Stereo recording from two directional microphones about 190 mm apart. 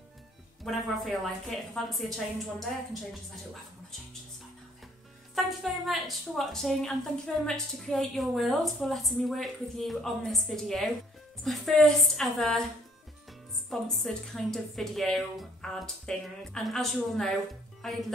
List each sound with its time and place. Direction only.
0.7 s a woman's voice: centre (ahead or behind)
5.3 s a woman's voice: centre (ahead or behind)
13.7 s a woman's voice: centre (ahead or behind)